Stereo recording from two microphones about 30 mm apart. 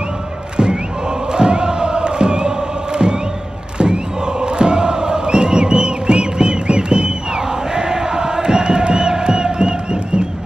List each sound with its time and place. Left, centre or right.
1.3 s crowd: right